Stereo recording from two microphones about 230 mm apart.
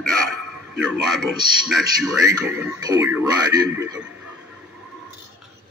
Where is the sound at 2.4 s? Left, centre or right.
Centre.